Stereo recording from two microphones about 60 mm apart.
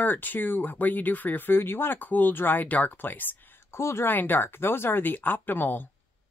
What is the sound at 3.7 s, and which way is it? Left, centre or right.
Speech, left.